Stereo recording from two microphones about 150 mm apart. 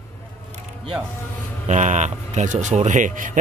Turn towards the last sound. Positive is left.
turn(degrees=-60)  # may be behind; listen again after turning